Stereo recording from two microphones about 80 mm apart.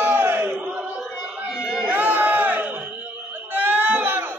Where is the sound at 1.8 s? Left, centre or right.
Right.